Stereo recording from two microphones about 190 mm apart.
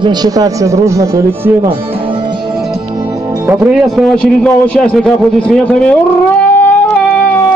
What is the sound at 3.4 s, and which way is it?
Speech, 10° right (ahead or behind).